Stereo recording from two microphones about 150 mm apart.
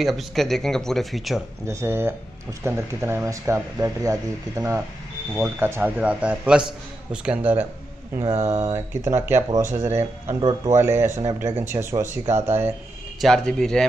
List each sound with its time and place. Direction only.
0.0 s speech: centre (ahead or behind)
1.7 s speech: 15° right (ahead or behind)
8.4 s speech: 45° right (ahead or behind)
8.7 s speech: 15° right (ahead or behind)
13.2 s speech: 5° left (ahead or behind)